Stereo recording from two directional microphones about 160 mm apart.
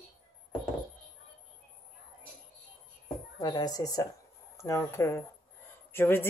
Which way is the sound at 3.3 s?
25° left (ahead or behind).